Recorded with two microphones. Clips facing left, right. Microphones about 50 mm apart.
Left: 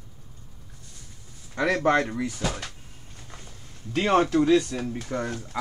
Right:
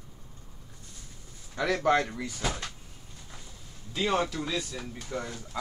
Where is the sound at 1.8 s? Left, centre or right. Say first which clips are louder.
Left 3 dB; left.